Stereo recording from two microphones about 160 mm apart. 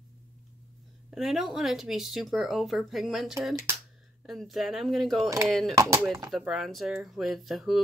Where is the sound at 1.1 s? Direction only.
Centre (ahead or behind).